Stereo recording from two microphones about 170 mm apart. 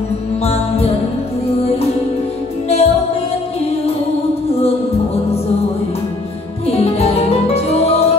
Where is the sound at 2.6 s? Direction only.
35° left (ahead or behind).